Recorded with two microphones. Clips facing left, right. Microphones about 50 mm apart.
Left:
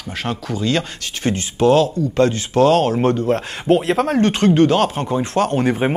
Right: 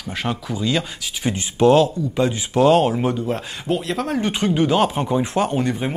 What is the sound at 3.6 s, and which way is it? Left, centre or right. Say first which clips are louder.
Speech: left 8 dB; centre.